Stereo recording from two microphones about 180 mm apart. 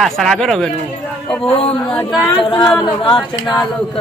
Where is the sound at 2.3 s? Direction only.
25° left (ahead or behind).